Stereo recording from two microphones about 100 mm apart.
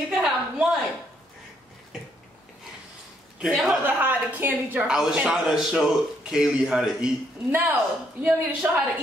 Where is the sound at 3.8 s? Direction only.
20° right (ahead or behind).